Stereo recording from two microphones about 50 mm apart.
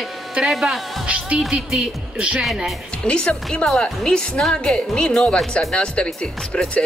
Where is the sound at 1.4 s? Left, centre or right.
Centre.